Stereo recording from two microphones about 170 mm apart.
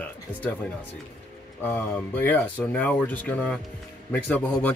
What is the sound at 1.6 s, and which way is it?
Speech, 10° left (ahead or behind).